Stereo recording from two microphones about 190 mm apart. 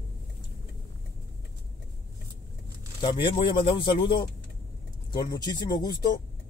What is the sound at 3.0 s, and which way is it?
Speech, 25° left (ahead or behind).